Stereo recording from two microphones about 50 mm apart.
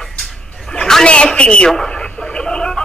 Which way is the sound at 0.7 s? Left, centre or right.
Centre.